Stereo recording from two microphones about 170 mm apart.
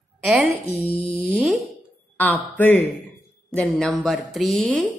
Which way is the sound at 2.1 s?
10° left (ahead or behind).